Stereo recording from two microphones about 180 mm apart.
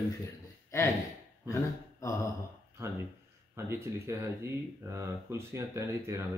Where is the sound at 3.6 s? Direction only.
15° right (ahead or behind).